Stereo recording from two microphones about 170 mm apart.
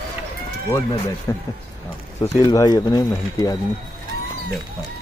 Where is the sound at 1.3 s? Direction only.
20° left (ahead or behind).